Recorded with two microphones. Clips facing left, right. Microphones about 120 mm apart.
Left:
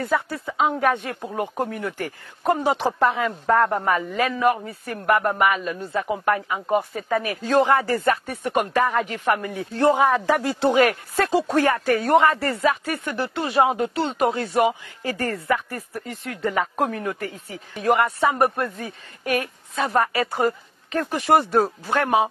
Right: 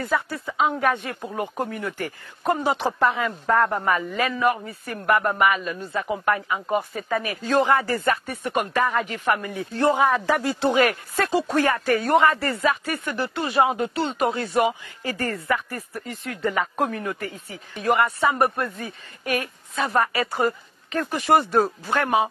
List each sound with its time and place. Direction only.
0.0 s speech: 35° left (ahead or behind)